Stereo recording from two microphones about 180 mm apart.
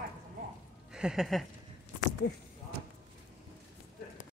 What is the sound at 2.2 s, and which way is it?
Speech, 70° left (ahead or behind).